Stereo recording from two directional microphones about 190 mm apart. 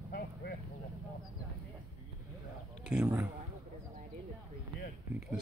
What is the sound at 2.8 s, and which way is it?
Speech, 5° right (ahead or behind).